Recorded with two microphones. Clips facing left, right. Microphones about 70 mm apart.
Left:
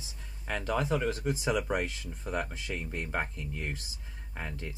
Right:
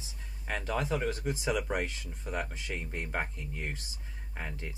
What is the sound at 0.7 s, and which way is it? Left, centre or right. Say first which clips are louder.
Speech: left 2 dB; left.